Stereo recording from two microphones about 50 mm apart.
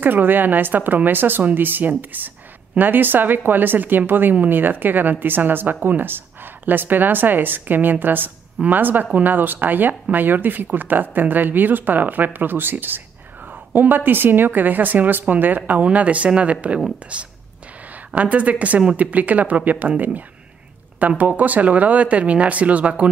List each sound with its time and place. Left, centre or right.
0.0 s speech: right